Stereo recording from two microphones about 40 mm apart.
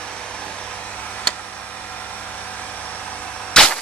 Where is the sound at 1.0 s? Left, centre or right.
Left.